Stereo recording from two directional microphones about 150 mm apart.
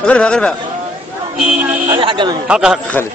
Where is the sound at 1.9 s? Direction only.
35° right (ahead or behind).